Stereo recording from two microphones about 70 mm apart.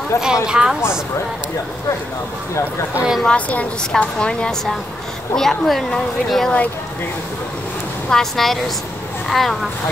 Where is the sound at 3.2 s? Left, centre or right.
Centre.